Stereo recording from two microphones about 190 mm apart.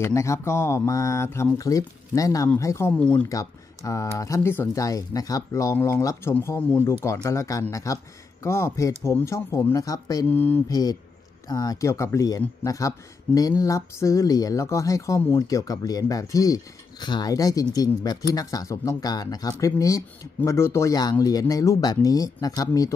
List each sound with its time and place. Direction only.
0.0 s speech: 15° left (ahead or behind)